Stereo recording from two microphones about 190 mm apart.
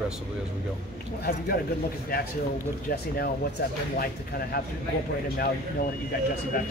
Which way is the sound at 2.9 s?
50° left (ahead or behind).